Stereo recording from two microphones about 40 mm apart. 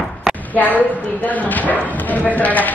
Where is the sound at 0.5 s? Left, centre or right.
Left.